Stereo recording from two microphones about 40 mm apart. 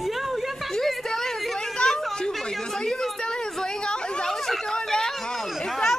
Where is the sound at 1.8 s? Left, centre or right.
Centre.